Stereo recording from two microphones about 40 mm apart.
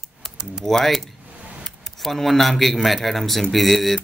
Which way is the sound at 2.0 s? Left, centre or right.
Centre.